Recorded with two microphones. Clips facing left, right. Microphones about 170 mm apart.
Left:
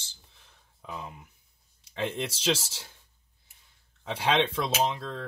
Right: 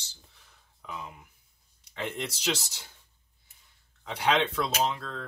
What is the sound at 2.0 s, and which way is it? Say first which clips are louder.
Speech: left 3 dB; 30° left (ahead or behind).